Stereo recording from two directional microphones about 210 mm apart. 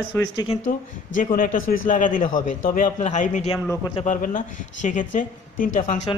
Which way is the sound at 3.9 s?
35° left (ahead or behind).